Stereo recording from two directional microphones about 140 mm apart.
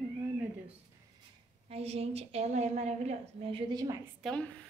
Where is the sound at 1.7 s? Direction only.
45° right (ahead or behind).